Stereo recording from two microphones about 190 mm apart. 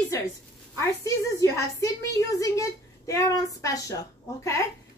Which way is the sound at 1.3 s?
15° left (ahead or behind).